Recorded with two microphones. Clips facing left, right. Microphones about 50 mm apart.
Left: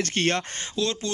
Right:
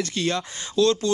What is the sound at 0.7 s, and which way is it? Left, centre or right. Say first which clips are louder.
Speech: right 8 dB; left.